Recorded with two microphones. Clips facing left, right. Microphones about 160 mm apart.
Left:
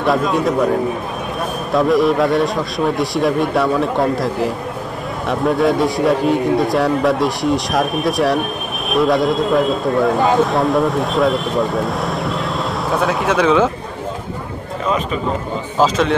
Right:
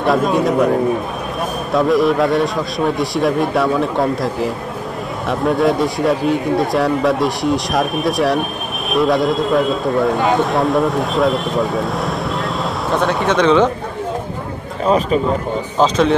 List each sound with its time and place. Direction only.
0.3 s speech: centre (ahead or behind)
1.7 s speech: centre (ahead or behind)
14.9 s speech: 35° right (ahead or behind)
15.8 s speech: centre (ahead or behind)